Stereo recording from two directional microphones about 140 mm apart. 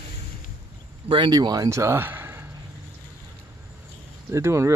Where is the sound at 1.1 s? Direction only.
35° right (ahead or behind); by 2.5 s 15° right (ahead or behind).